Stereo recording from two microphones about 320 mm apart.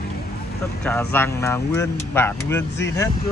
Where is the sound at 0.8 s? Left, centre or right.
Centre.